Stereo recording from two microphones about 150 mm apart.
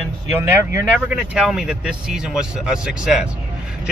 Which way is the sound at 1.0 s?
5° right (ahead or behind).